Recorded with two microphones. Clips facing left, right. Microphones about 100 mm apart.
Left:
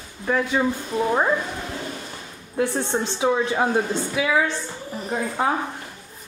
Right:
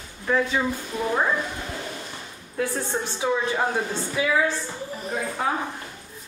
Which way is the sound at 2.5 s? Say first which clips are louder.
Left 4 dB; 25° left (ahead or behind).